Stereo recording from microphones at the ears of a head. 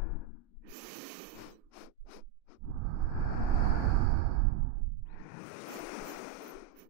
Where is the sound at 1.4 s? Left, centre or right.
Left.